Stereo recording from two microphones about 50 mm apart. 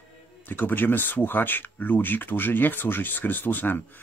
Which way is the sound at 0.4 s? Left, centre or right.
Left.